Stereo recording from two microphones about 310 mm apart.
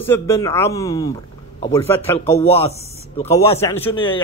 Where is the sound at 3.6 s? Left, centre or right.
Centre.